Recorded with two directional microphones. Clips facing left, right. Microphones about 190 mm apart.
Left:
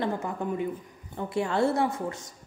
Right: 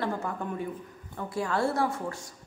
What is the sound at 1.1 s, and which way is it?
Speech, 25° left (ahead or behind).